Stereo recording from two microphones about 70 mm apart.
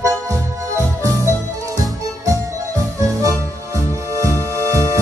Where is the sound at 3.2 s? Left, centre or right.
Right.